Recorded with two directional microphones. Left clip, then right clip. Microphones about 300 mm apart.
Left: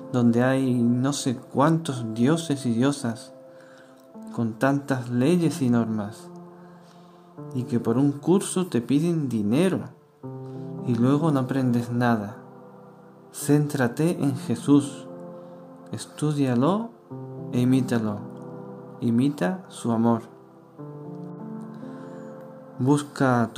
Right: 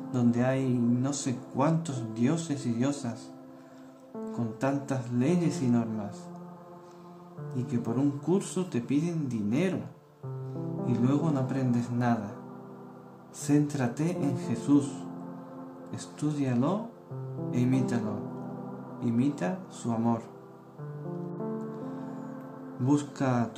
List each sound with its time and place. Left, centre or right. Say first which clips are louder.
0.1 s speech: left 6 dB; left
4.3 s speech: left 7 dB; left
7.5 s speech: left 7 dB; left
10.9 s speech: left 6 dB; left
13.5 s speech: left 5 dB; left
22.8 s speech: left 6 dB; left